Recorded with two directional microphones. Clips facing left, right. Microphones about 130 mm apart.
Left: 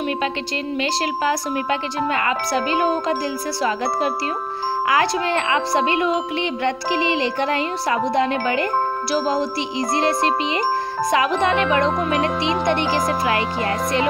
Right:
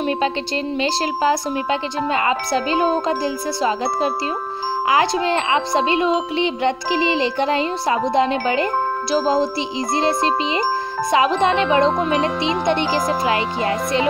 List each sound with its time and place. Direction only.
0.7 s speech: 30° right (ahead or behind)